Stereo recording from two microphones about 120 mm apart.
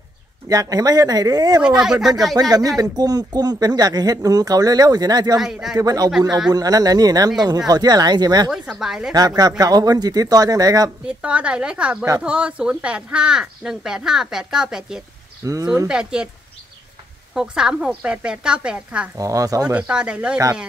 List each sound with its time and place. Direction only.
0.5 s speech: 30° right (ahead or behind)
1.6 s speech: 5° right (ahead or behind)
2.4 s speech: 35° right (ahead or behind)
5.4 s speech: 5° right (ahead or behind)
5.8 s speech: 30° right (ahead or behind)
8.5 s speech: 5° right (ahead or behind)
9.1 s speech: 30° right (ahead or behind)
11.1 s a woman's voice: 10° right (ahead or behind)
15.4 s speech: 30° right (ahead or behind)
15.9 s a woman's voice: 5° right (ahead or behind)
17.3 s a woman's voice: 5° right (ahead or behind)
19.1 s speech: 30° right (ahead or behind)
19.6 s a woman's voice: 10° right (ahead or behind)